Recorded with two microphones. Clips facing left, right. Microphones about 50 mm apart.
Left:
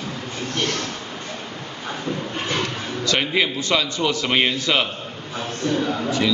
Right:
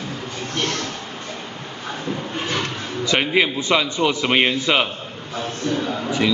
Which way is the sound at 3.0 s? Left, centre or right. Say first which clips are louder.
Right 2 dB; centre.